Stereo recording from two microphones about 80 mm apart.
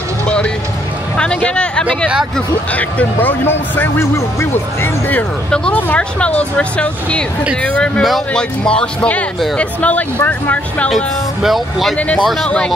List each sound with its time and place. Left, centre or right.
1.1 s a sound: centre
2.7 s speech: centre
11.4 s speech: centre
12.4 s speech: centre